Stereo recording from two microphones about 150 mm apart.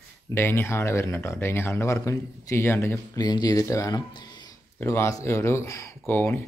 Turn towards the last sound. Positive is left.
turn(degrees=15)  # may be behind; listen again after turning